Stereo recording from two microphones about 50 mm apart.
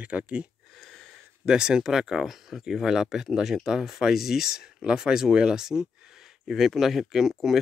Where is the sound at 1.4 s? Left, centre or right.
Centre.